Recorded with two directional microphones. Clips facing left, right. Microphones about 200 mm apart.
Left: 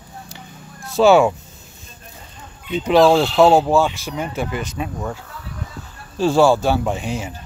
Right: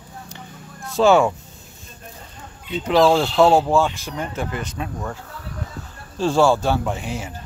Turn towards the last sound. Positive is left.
turn(degrees=15)  # may be behind; listen again after turning